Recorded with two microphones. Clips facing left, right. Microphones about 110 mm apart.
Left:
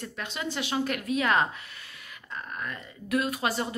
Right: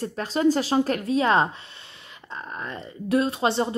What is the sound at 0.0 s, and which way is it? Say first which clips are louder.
Speech: right 13 dB; 35° right (ahead or behind).